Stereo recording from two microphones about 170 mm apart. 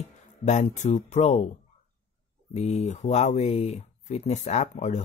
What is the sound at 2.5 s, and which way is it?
Speech, 40° left (ahead or behind).